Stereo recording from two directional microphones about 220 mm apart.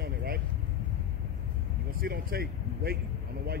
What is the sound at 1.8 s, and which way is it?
A man's voice, 45° right (ahead or behind).